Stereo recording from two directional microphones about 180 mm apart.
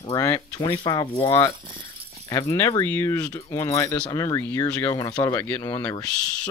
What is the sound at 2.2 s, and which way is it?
Speech, 15° left (ahead or behind).